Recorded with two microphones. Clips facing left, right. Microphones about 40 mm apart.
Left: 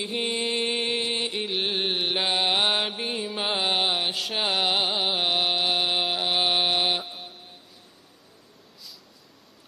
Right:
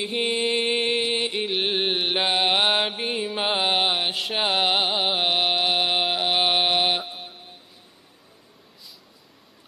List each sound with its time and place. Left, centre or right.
0.0 s music: centre
1.4 s mantra: centre
4.3 s music: centre